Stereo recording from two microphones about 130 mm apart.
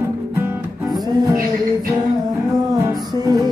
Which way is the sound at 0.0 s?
20° right (ahead or behind).